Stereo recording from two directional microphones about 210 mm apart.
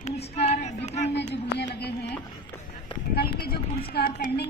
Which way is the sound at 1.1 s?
55° left (ahead or behind).